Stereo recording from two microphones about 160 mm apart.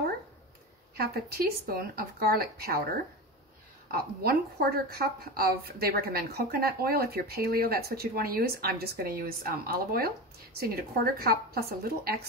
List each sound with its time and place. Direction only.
0.9 s a woman's voice: 75° right (ahead or behind)
3.9 s a woman's voice: 70° right (ahead or behind)